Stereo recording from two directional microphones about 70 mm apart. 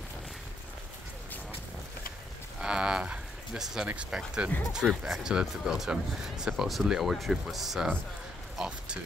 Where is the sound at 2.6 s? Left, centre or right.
Centre.